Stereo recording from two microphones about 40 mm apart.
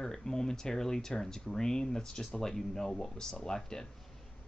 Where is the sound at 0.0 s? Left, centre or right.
Centre.